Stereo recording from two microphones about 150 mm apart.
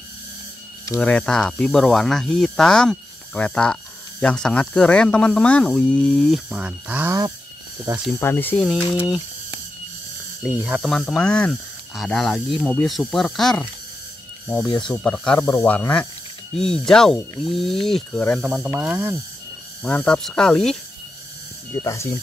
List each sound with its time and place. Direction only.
1.0 s speech: 5° left (ahead or behind)
7.1 s a sound: 25° right (ahead or behind)
8.2 s speech: 15° left (ahead or behind)
10.6 s speech: 5° right (ahead or behind)
10.9 s speech: 5° left (ahead or behind)
18.4 s speech: 5° right (ahead or behind)
19.8 s speech: 10° left (ahead or behind)
21.7 s speech: 20° left (ahead or behind)